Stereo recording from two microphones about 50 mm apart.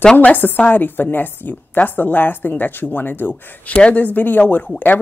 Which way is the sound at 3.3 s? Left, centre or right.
Left.